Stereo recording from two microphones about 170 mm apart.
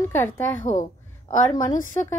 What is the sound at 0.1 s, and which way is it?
A woman's voice, 15° left (ahead or behind).